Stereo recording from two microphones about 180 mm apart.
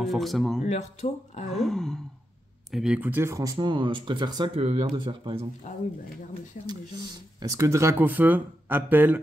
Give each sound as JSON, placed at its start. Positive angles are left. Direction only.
{"t": 0.0, "sound": "speech", "side_deg": 0}
{"t": 0.6, "sound": "speech", "side_deg": 40}
{"t": 1.5, "sound": "groan", "side_deg": 0}
{"t": 2.7, "sound": "speech", "side_deg": -5}
{"t": 7.5, "sound": "speech", "side_deg": -15}